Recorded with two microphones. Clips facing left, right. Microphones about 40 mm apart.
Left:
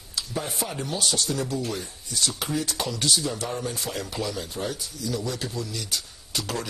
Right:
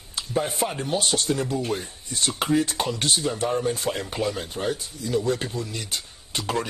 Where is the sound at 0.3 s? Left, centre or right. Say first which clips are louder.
Right 7 dB; right.